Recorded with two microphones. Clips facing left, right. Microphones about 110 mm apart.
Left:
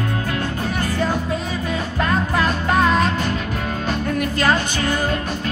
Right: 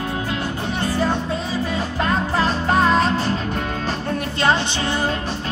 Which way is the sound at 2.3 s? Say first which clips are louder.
Right 1 dB; 35° right (ahead or behind).